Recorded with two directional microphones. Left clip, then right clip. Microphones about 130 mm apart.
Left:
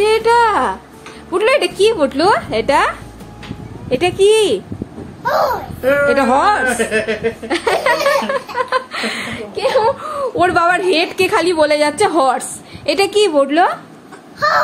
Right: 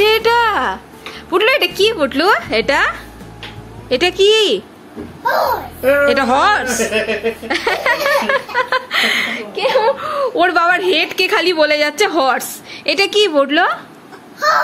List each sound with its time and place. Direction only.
0.0 s a sound: centre (ahead or behind)
1.3 s a woman's voice: centre (ahead or behind)
3.9 s a woman's voice: 5° left (ahead or behind)
5.8 s a woman's voice: 10° left (ahead or behind)
9.6 s a woman's voice: 20° left (ahead or behind)
9.9 s a woman's voice: 5° left (ahead or behind)